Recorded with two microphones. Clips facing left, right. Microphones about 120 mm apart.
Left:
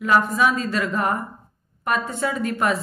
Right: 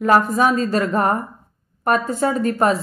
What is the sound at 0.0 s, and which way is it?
A woman's voice, 45° right (ahead or behind).